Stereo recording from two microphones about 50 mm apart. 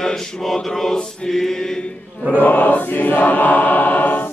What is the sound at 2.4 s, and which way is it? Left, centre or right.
Choir, left.